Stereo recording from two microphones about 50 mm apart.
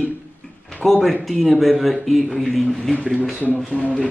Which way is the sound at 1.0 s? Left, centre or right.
Centre.